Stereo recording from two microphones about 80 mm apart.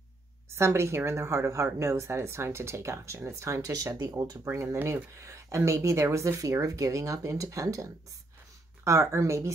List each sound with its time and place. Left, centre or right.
0.5 s speech: right
4.5 s speech: right